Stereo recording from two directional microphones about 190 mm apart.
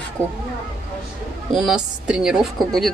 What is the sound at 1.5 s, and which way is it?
A woman's voice, centre (ahead or behind).